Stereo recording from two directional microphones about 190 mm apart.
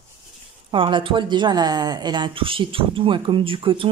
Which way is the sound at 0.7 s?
25° right (ahead or behind).